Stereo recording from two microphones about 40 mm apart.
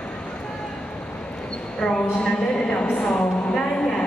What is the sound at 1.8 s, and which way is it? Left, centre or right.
A woman's voice, left.